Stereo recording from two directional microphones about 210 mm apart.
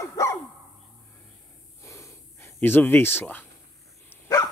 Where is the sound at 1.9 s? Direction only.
15° left (ahead or behind).